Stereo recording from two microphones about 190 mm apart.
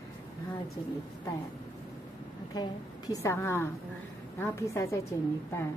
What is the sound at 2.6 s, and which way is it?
A woman's voice, 20° left (ahead or behind).